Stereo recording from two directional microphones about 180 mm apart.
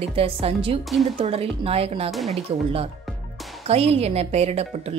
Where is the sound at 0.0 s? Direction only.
35° right (ahead or behind).